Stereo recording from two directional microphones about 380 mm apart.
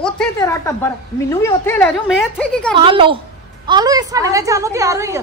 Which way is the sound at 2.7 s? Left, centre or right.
Centre.